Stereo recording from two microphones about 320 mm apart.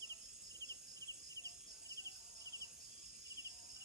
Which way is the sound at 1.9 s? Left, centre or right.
Centre.